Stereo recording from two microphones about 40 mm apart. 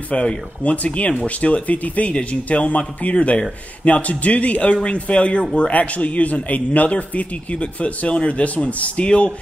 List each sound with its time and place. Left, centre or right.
0.1 s speech: left
5.7 s speech: left
9.0 s speech: left